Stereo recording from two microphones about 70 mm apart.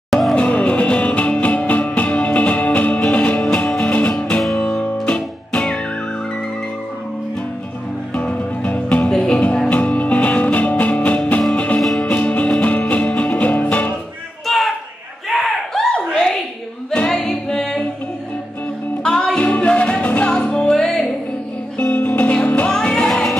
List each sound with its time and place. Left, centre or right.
0.1 s music: centre
0.4 s music: centre
8.1 s music: centre
14.4 s a sound: centre
17.1 s music: centre
19.0 s music: centre
21.7 s music: centre